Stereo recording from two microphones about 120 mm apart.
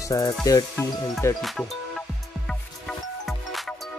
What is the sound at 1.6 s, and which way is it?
Music, 5° left (ahead or behind).